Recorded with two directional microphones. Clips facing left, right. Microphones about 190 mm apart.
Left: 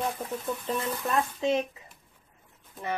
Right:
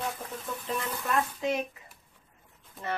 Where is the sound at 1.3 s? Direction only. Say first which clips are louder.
Left 4 dB; 25° left (ahead or behind).